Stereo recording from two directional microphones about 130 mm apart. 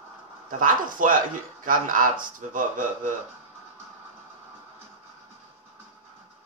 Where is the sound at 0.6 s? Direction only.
90° right.